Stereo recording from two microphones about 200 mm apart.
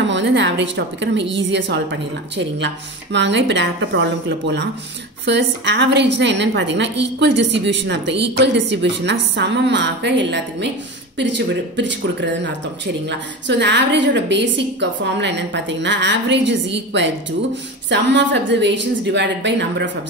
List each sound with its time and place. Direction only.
0.0 s speech: 60° right (ahead or behind)